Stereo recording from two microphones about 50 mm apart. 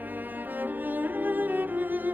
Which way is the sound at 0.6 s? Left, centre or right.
Right.